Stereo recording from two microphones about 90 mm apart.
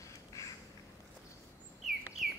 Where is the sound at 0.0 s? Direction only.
35° left (ahead or behind).